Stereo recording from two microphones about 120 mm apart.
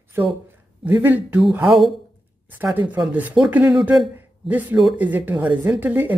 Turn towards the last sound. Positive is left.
turn(degrees=-15)  # may be behind; listen again after turning